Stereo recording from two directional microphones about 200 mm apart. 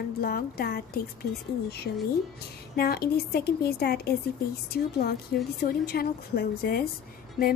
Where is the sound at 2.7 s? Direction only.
50° left (ahead or behind).